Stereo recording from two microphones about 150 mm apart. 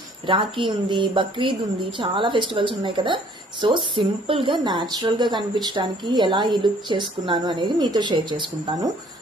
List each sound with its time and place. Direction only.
0.3 s a woman's voice: 35° right (ahead or behind)